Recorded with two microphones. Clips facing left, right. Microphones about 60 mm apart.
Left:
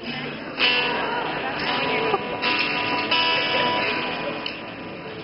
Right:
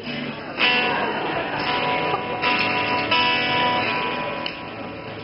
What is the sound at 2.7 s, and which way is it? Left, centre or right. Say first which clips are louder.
Music: right 2 dB; centre.